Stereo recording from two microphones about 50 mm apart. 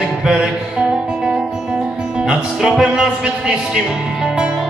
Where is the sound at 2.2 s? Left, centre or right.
Centre.